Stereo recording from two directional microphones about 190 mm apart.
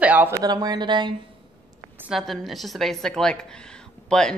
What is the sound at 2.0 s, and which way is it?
Speech, centre (ahead or behind).